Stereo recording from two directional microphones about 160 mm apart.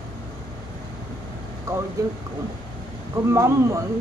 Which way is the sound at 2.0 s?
20° right (ahead or behind).